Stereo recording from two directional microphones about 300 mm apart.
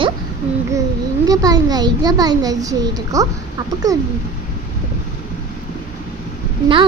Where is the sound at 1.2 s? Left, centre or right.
Centre.